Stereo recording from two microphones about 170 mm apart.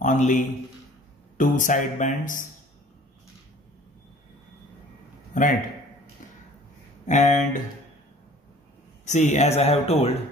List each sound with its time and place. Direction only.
0.0 s a man's voice: 50° left (ahead or behind)
5.3 s a sound: 50° left (ahead or behind)
7.1 s speech: 45° left (ahead or behind)
9.0 s speech: 45° left (ahead or behind)